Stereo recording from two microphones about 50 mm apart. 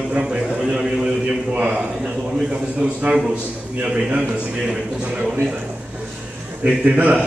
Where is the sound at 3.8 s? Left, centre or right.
Right.